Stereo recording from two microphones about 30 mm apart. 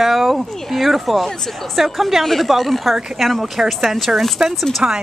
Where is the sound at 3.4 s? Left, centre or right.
Centre.